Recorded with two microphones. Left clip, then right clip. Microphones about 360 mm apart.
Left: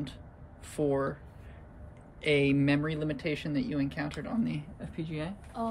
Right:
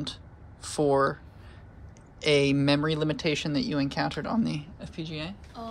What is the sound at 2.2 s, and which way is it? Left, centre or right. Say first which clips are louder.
Speech: right 3 dB; centre.